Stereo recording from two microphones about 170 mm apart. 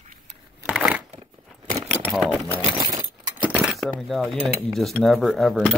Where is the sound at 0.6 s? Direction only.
10° right (ahead or behind).